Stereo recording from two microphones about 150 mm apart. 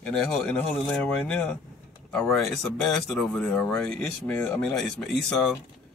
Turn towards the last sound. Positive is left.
turn(degrees=5)  # may be behind; listen again after turning